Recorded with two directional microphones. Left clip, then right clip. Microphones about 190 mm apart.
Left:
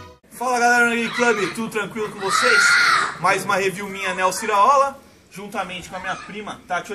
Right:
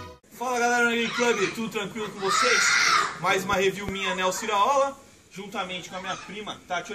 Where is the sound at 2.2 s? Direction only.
45° right (ahead or behind).